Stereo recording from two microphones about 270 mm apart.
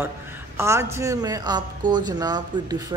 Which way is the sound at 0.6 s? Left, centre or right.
Centre.